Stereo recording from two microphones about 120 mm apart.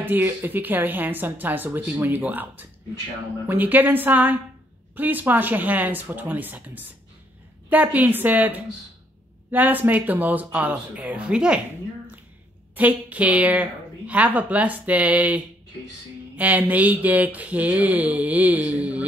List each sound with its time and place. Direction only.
0.0 s a woman's voice: 15° right (ahead or behind)
12.7 s a woman's voice: 15° right (ahead or behind)